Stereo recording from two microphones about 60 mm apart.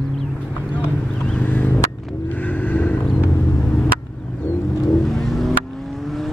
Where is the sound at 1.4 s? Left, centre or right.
Left.